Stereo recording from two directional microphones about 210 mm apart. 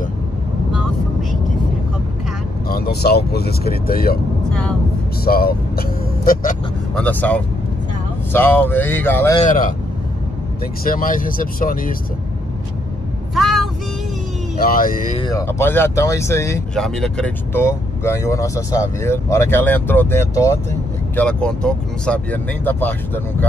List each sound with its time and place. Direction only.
2.7 s speech: 45° left (ahead or behind)
4.5 s speech: 5° left (ahead or behind)
5.2 s speech: 45° left (ahead or behind)
7.0 s speech: 5° left (ahead or behind)
9.4 s speech: 40° left (ahead or behind)
11.1 s speech: 40° left (ahead or behind)
13.3 s vehicle: centre (ahead or behind)
14.6 s speech: 45° left (ahead or behind)
15.1 s speech: 15° left (ahead or behind)
16.8 s speech: centre (ahead or behind)